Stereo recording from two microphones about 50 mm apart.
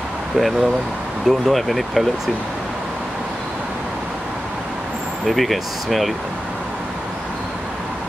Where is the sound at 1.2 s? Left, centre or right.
Centre.